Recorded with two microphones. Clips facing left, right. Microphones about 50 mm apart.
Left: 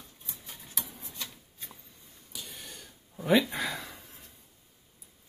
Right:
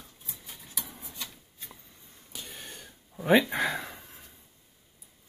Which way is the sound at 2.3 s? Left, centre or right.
Right.